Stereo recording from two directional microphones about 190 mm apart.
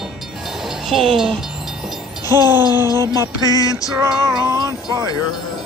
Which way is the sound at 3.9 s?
20° right (ahead or behind).